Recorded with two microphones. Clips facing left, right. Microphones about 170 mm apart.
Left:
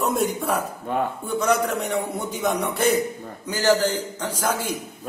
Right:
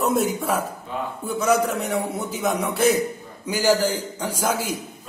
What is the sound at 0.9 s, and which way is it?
Speech, 55° left (ahead or behind).